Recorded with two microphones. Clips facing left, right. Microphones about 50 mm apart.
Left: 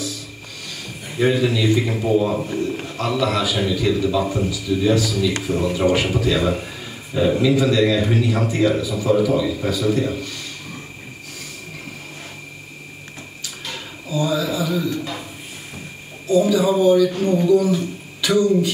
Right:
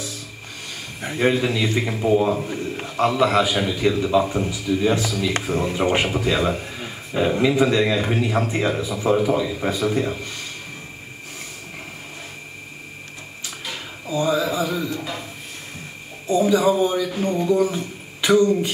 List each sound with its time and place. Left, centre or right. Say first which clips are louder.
1.1 s speech: left 1 dB; centre
1.4 s a man's voice: left 3 dB; right
14.0 s speech: right 1 dB; right
16.3 s a man's voice: left 1 dB; right
17.4 s a sound: left 3 dB; right